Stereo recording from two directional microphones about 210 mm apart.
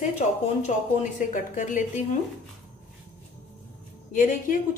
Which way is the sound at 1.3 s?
35° left (ahead or behind).